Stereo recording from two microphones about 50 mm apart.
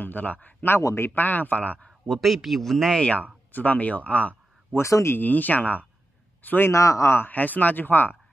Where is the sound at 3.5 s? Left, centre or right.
Left.